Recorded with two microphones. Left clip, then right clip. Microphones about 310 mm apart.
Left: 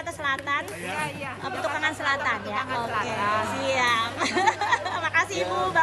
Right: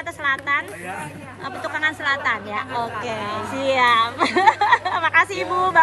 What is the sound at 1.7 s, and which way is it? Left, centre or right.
A woman's voice, centre.